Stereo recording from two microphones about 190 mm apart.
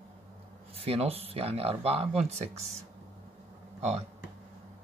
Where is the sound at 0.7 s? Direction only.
30° right (ahead or behind).